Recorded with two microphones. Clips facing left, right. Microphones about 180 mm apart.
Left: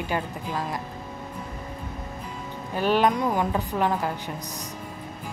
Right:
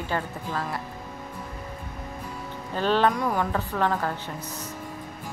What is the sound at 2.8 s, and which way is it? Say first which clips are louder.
A woman's voice: left 1 dB; 15° left (ahead or behind).